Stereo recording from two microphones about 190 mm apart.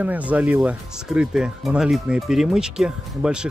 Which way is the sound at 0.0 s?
10° right (ahead or behind).